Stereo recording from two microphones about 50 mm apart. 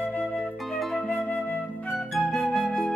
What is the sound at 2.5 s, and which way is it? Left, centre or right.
Flute, centre.